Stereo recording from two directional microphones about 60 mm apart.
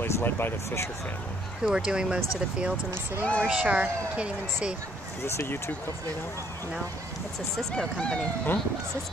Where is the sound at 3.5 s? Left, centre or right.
Right.